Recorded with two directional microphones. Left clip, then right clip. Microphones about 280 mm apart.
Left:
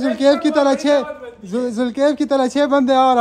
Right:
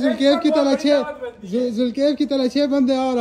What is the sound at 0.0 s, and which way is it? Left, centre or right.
A man's voice, centre.